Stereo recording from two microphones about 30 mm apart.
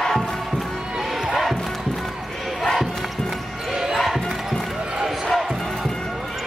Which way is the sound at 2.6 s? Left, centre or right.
Centre.